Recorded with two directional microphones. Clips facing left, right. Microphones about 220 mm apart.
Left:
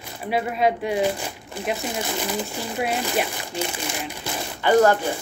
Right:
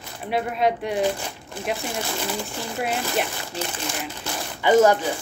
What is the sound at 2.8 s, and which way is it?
Speech, centre (ahead or behind).